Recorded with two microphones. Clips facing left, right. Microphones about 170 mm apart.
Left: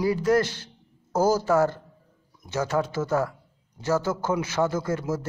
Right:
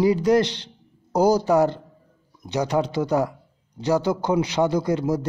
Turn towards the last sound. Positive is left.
turn(degrees=-15)  # may be behind; listen again after turning